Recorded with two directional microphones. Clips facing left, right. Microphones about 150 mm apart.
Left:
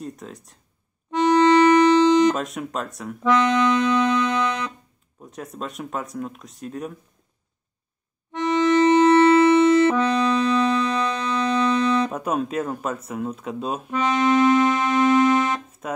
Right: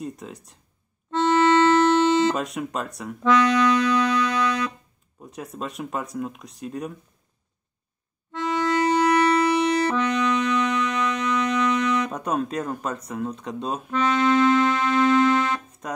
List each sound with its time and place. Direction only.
0.0 s speech: centre (ahead or behind)
1.1 s music: 15° left (ahead or behind)
2.3 s speech: centre (ahead or behind)
3.3 s music: 25° left (ahead or behind)
5.2 s speech: centre (ahead or behind)
8.3 s music: 20° left (ahead or behind)
12.1 s speech: 5° left (ahead or behind)
15.8 s speech: 5° left (ahead or behind)